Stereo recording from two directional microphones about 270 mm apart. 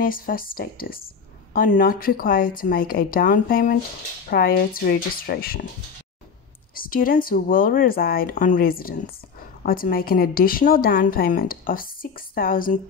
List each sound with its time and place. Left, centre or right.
0.0 s a woman's voice: left
6.7 s a woman's voice: left